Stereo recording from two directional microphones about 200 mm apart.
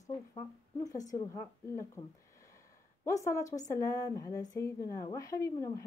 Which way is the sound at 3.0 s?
15° left (ahead or behind).